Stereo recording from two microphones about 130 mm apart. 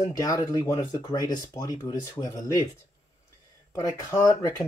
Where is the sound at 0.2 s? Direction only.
25° left (ahead or behind).